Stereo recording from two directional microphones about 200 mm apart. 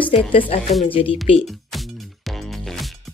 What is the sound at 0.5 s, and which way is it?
Speech, 30° left (ahead or behind).